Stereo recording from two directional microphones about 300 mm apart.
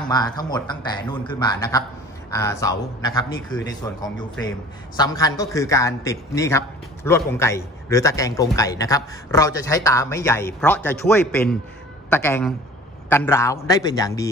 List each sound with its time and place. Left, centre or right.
0.1 s a man's voice: centre